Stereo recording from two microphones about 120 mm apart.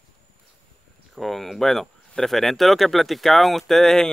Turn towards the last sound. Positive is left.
turn(degrees=5)  # may be behind; listen again after turning